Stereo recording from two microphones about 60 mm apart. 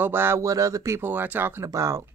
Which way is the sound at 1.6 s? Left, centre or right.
Right.